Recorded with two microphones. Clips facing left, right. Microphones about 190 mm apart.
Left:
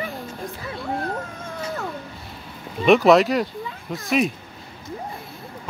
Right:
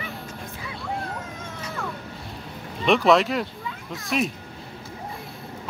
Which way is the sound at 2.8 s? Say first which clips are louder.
Left 4 dB; centre (ahead or behind).